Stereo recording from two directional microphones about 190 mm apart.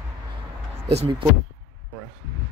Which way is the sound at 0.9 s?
35° right (ahead or behind).